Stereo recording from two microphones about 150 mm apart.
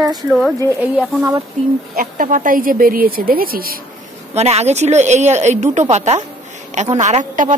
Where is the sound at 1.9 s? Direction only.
70° right (ahead or behind).